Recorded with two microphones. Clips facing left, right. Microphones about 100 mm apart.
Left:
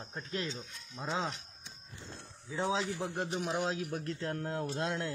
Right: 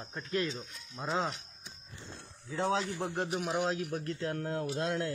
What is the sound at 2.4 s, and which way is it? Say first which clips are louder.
Speech: right 2 dB; 5° left (ahead or behind).